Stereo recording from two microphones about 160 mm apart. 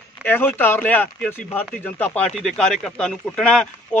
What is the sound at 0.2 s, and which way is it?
Speech, 15° left (ahead or behind).